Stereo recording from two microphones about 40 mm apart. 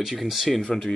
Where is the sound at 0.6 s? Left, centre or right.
Centre.